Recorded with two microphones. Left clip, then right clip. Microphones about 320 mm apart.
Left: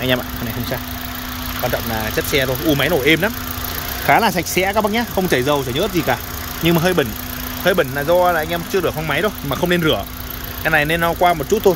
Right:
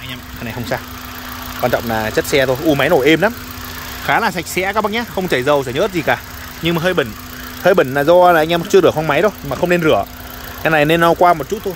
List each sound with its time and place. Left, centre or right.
1.7 s speech: centre
4.0 s speech: centre
7.6 s speech: centre